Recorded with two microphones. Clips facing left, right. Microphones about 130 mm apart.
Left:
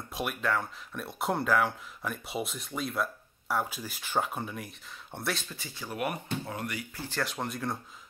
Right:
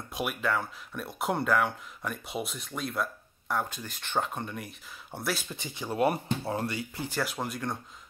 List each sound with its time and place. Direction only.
0.1 s speech: centre (ahead or behind)
5.5 s speech: 20° right (ahead or behind)
7.0 s speech: 10° right (ahead or behind)